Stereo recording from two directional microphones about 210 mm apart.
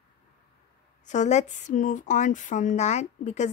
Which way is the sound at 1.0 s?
35° left (ahead or behind).